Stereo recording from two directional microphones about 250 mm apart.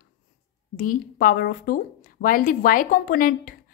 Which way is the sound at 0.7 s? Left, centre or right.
Left.